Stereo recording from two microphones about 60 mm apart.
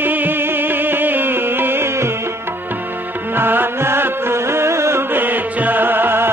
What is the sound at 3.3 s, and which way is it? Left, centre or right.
Music, right.